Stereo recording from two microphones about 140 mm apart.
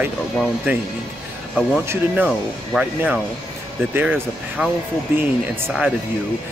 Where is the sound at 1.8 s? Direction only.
15° right (ahead or behind).